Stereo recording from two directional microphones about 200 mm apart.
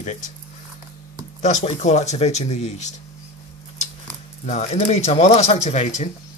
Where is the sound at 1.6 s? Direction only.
35° left (ahead or behind).